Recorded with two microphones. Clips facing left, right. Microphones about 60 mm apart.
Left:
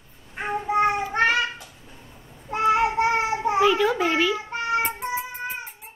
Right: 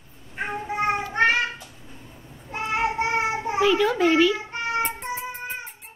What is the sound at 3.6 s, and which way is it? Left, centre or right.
Speech, centre.